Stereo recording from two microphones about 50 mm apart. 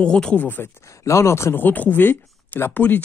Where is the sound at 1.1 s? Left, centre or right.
Left.